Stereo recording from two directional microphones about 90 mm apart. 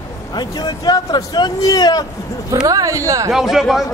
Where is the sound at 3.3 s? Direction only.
5° right (ahead or behind).